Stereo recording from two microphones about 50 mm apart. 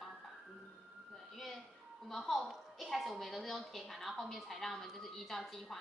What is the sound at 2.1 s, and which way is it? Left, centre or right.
A woman's voice, centre.